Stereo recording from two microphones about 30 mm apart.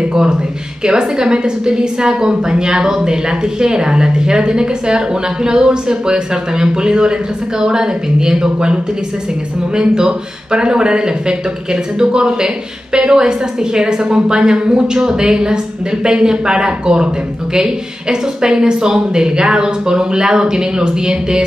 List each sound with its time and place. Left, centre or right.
0.1 s a woman's voice: right